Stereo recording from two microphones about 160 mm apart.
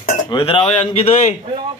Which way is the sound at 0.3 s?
35° left (ahead or behind).